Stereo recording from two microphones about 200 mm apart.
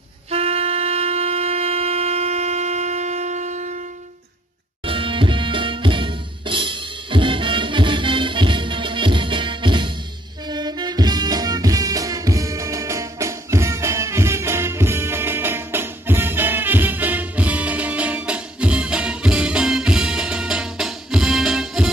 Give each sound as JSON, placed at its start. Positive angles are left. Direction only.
{"t": 0.3, "sound": "wind instrument", "side_deg": -30}
{"t": 4.8, "sound": "music", "side_deg": -25}